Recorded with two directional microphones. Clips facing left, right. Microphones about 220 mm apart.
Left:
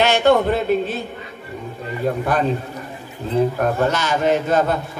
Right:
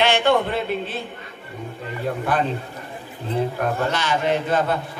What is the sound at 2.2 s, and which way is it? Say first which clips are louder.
Speech: left 1 dB; 45° left (ahead or behind).